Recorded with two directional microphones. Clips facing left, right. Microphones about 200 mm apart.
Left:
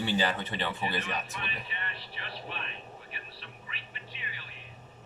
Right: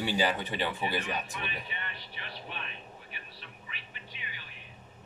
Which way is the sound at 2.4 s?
Centre (ahead or behind).